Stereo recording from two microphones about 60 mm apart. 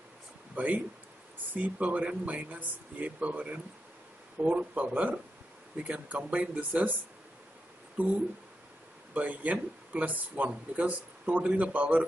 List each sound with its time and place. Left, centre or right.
0.6 s speech: right
8.0 s speech: right